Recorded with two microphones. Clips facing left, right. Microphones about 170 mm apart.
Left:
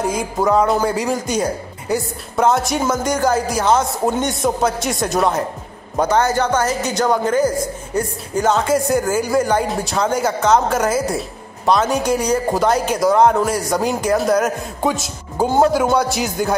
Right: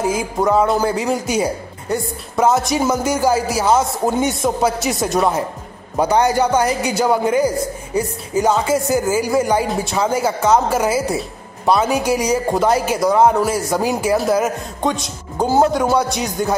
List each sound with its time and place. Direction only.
0.0 s a man's voice: 5° right (ahead or behind)
5.9 s a man's voice: 10° right (ahead or behind)